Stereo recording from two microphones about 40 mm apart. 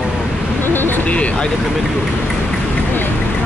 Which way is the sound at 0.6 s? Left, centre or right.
Left.